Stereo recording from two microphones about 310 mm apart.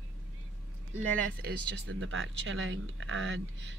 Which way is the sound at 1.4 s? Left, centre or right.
Right.